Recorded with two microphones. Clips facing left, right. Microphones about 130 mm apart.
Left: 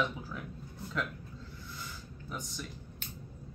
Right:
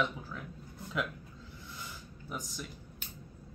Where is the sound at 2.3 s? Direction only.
5° right (ahead or behind).